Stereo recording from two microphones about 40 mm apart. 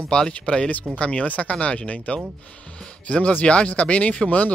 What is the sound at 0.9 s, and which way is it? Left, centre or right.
Speech, left.